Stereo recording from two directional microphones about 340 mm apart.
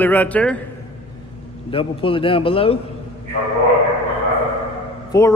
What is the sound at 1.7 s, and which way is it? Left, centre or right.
A man's voice, centre.